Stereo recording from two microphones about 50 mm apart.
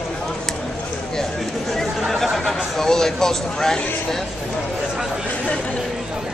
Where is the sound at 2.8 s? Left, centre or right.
Centre.